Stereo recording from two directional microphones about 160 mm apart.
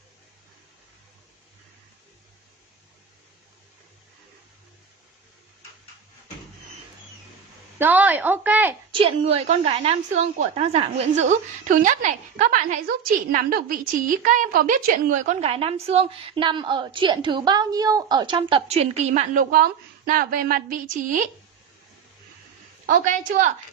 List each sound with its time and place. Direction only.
7.8 s speech: 10° right (ahead or behind)
8.9 s a woman's voice: 40° right (ahead or behind)
19.5 s a woman's voice: 60° right (ahead or behind)
22.8 s a woman's voice: 55° right (ahead or behind)